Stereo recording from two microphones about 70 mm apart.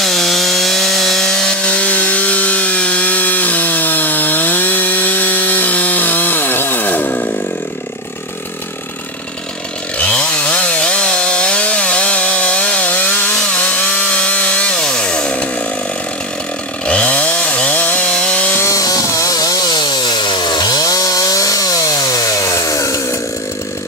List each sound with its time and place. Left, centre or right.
0.0 s chainsaw: centre; by 7.2 s left
9.9 s chainsaw: centre
16.8 s chainsaw: centre
18.6 s chainsaw: left